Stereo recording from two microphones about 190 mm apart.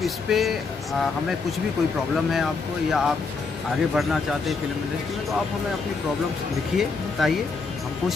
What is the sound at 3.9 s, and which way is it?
Speech, centre (ahead or behind).